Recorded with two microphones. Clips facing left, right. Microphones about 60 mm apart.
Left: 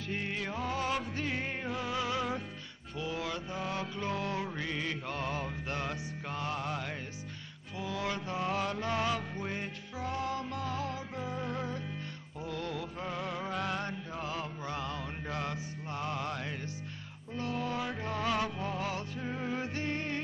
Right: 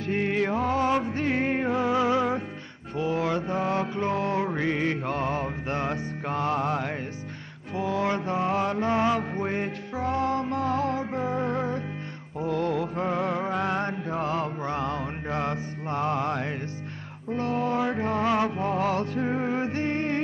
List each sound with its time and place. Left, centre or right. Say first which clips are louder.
0.0 s music: right 11 dB; right
3.0 s mantra: right 10 dB; right
9.3 s music: right 10 dB; right